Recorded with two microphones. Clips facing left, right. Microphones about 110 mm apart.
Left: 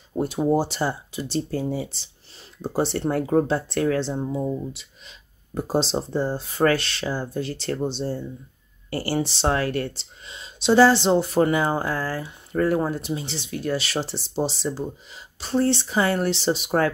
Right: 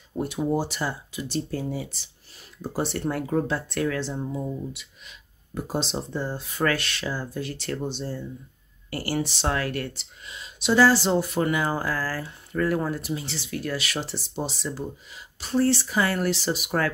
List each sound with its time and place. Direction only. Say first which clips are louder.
0.1 s speech: left 4 dB; 30° left (ahead or behind)